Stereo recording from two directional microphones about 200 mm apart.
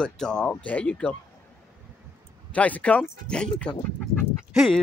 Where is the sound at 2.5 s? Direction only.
5° left (ahead or behind).